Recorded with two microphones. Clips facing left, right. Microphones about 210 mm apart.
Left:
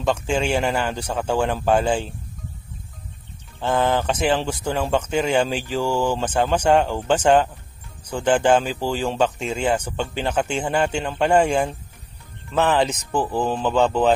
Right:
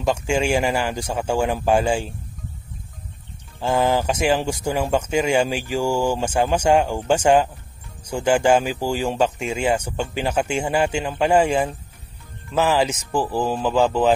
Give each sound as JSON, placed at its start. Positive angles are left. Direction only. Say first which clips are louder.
{"t": 0.0, "sound": "speech", "louder": "right 1 dB", "side_deg": -10}
{"t": 3.6, "sound": "speech", "louder": "right 1 dB", "side_deg": -10}